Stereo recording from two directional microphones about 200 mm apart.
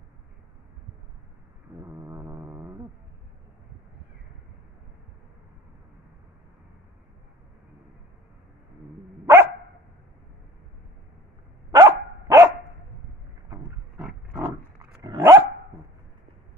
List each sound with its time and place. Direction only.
1.8 s dog: 15° right (ahead or behind)
9.2 s dog: 10° right (ahead or behind)
11.7 s dog: 15° right (ahead or behind)
13.5 s roaring cats: 5° right (ahead or behind)
14.8 s dog: 20° right (ahead or behind)